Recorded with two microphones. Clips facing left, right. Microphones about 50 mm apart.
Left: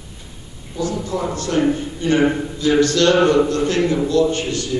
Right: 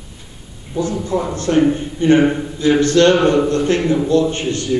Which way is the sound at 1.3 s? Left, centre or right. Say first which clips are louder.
Right 4 dB; right.